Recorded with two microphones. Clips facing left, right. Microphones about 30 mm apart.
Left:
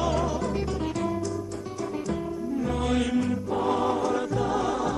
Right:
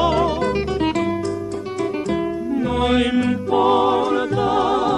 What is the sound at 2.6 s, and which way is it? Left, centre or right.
Music, right.